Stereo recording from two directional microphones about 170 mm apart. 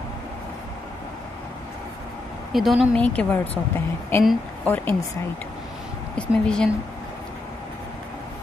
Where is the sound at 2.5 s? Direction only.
Centre (ahead or behind).